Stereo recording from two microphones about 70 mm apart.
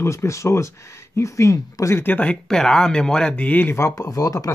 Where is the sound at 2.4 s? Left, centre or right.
Centre.